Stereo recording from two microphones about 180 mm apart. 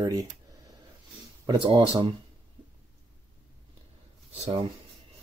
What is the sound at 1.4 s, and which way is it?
Speech, 25° right (ahead or behind).